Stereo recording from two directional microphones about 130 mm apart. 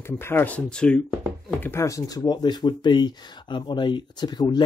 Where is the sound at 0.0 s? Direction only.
20° left (ahead or behind).